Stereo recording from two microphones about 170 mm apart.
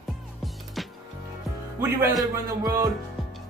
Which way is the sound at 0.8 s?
Centre (ahead or behind).